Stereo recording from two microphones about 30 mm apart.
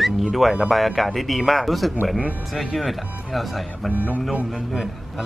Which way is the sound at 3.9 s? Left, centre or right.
Right.